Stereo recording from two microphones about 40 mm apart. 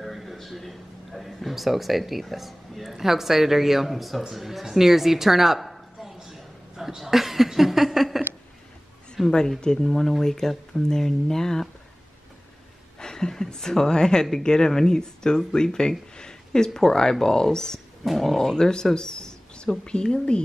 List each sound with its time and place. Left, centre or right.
0.0 s a man's voice: centre
5.9 s a sound: centre
9.1 s speech: centre
13.0 s speech: centre
18.0 s speech: centre; by 20.4 s left